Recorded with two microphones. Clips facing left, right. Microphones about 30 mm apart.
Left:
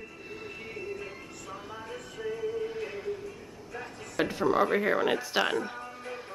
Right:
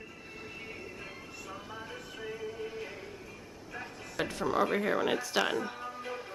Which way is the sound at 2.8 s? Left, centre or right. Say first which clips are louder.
Left 5 dB; centre.